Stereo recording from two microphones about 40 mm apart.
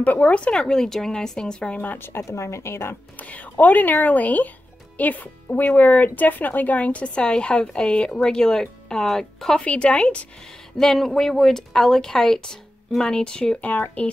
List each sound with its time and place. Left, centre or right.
0.2 s speech: left
0.6 s a woman's voice: centre
2.0 s speech: left
3.2 s speech: left
7.2 s a woman's voice: left
9.7 s speech: left
10.8 s a woman's voice: centre
13.6 s speech: left